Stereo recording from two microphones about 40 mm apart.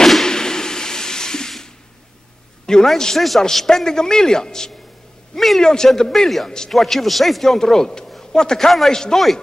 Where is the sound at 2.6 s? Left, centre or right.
Centre.